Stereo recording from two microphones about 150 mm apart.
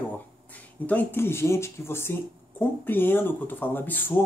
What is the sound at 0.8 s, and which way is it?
Speech, 15° left (ahead or behind).